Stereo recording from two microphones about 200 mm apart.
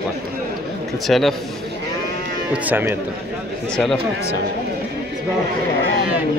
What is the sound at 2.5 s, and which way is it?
Speech, 10° right (ahead or behind).